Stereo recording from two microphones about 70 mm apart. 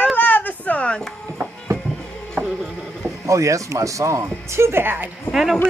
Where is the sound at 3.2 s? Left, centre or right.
Right.